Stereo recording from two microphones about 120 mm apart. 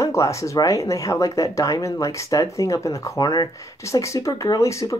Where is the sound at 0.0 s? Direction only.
25° left (ahead or behind).